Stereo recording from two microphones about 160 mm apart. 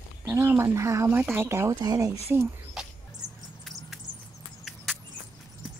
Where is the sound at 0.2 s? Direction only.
15° right (ahead or behind).